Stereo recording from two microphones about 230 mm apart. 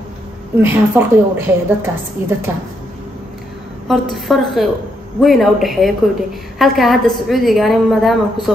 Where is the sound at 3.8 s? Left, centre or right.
Centre.